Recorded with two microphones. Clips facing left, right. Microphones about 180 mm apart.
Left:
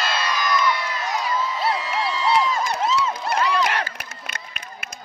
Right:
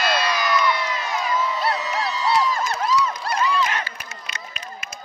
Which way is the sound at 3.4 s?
65° left (ahead or behind).